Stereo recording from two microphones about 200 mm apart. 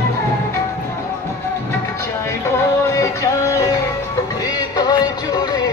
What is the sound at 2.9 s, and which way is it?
Music, 15° left (ahead or behind).